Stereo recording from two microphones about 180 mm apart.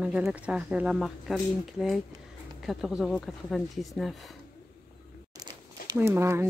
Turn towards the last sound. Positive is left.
turn(degrees=-15)  # may be behind; listen again after turning